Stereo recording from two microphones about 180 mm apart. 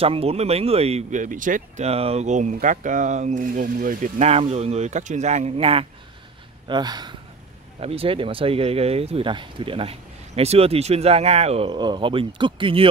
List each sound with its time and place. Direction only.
0.0 s speech: 35° right (ahead or behind)